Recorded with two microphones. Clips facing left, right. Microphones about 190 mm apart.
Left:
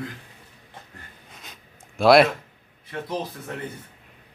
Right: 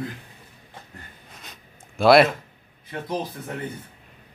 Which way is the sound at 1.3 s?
Centre (ahead or behind).